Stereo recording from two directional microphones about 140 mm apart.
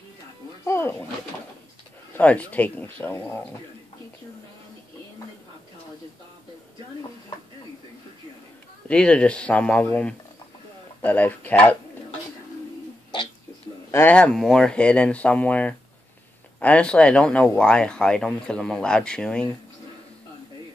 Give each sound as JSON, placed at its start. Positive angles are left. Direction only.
{"t": 0.7, "sound": "a sound", "side_deg": 20}
{"t": 2.1, "sound": "speech", "side_deg": 10}
{"t": 8.8, "sound": "speech", "side_deg": 10}
{"t": 13.9, "sound": "speech", "side_deg": 10}